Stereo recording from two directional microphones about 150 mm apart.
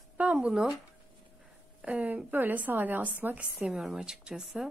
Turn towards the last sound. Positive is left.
turn(degrees=-5)  # may be behind; listen again after turning